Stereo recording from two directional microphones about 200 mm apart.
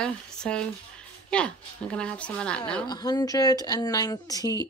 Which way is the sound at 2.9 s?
20° left (ahead or behind).